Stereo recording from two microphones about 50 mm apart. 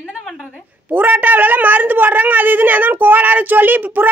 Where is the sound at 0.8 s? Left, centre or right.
Right.